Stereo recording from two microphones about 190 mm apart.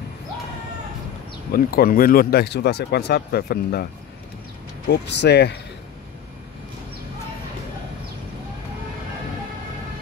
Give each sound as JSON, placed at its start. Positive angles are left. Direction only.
{"t": 1.5, "sound": "speech", "side_deg": 50}
{"t": 4.8, "sound": "speech", "side_deg": 60}